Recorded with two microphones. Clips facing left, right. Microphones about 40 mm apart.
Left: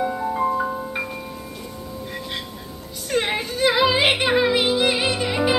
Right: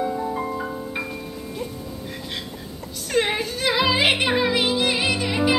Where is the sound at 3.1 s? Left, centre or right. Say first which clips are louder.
Even; centre.